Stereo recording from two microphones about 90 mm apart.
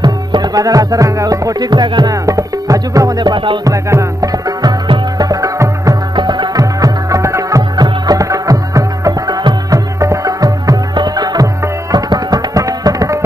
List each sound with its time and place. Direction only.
0.0 s music: 55° right (ahead or behind)
3.6 s music: 40° right (ahead or behind); by 5.3 s 55° right (ahead or behind)
5.3 s music: 40° right (ahead or behind)
6.1 s music: 55° right (ahead or behind)
6.6 s music: 40° right (ahead or behind)
7.7 s music: 50° right (ahead or behind)
9.4 s music: 50° right (ahead or behind)
9.9 s music: 40° right (ahead or behind)
11.9 s tabla: 45° right (ahead or behind)